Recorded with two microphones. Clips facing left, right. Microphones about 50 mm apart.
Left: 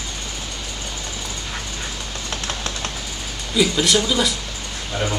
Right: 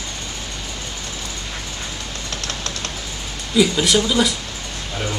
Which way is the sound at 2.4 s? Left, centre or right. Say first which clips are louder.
Left 1 dB; left.